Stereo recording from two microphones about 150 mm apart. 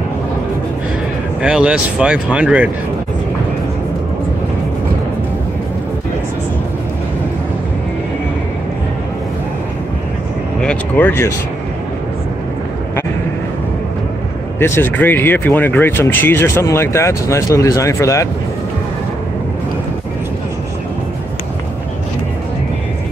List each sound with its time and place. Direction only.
1.4 s speech: 5° right (ahead or behind)
10.6 s speech: 10° left (ahead or behind)
14.6 s speech: 15° left (ahead or behind)